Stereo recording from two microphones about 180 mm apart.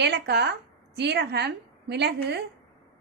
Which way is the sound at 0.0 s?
70° right (ahead or behind).